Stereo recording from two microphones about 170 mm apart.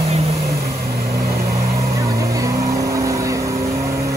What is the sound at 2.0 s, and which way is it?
Vehicle, 20° right (ahead or behind).